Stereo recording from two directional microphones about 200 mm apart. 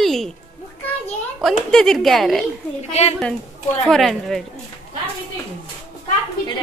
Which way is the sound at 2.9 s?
30° left (ahead or behind).